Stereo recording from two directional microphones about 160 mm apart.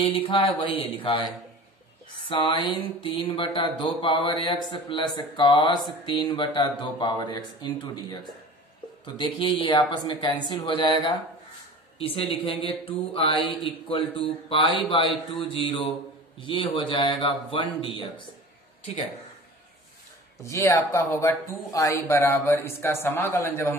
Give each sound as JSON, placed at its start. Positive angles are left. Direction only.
{"t": 0.0, "sound": "speech", "side_deg": 35}
{"t": 2.2, "sound": "speech", "side_deg": 30}
{"t": 12.3, "sound": "speech", "side_deg": 35}
{"t": 20.4, "sound": "speech", "side_deg": 20}